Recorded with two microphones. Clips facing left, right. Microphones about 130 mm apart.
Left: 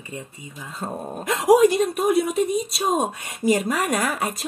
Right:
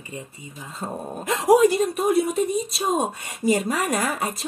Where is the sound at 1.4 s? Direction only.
Centre (ahead or behind).